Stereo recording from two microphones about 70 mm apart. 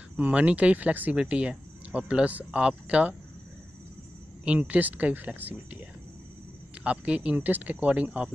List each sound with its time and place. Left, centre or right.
0.2 s speech: centre
4.5 s speech: centre